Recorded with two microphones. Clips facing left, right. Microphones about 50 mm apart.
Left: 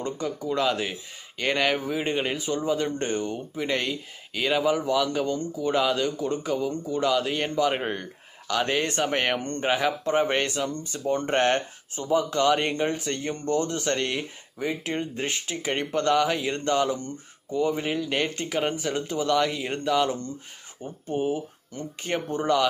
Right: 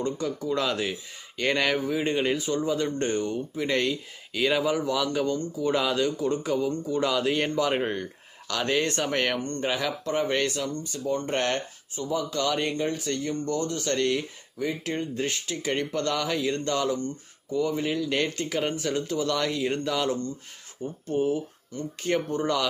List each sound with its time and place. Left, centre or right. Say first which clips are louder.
0.0 s speech: right 1 dB; centre
5.2 s speech: even; centre
5.6 s speech: left 1 dB; centre
9.4 s speech: left 3 dB; left
11.9 s speech: left 4 dB; left
18.1 s speech: even; centre
21.1 s speech: right 1 dB; centre